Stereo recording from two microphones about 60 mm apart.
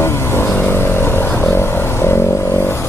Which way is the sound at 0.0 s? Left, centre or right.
Left.